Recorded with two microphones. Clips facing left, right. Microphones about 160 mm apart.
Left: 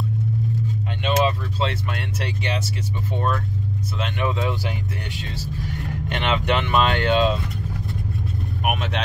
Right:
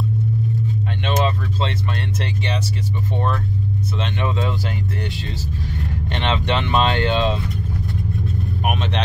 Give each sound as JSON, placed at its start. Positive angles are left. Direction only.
{"t": 1.0, "sound": "speech", "side_deg": 10}
{"t": 4.0, "sound": "speech", "side_deg": 10}
{"t": 6.0, "sound": "speech", "side_deg": 10}